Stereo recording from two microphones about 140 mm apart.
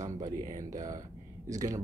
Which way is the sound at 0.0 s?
25° right (ahead or behind).